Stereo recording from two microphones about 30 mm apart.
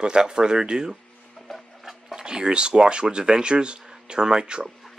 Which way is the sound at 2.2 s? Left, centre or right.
Right.